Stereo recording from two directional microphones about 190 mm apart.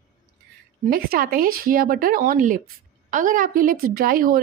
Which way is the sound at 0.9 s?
50° right (ahead or behind).